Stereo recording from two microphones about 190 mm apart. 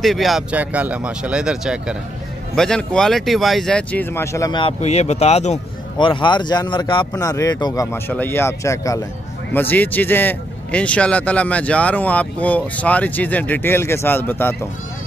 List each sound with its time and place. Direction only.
0.0 s speech: centre (ahead or behind); by 4.7 s 25° left (ahead or behind)
4.7 s speech: 35° left (ahead or behind)
5.9 s speech: 25° left (ahead or behind)